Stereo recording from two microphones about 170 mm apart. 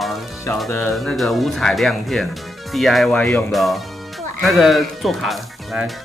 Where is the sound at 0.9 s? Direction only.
Centre (ahead or behind).